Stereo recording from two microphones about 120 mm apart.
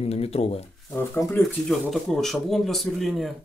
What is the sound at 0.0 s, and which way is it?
Speech, 60° left (ahead or behind).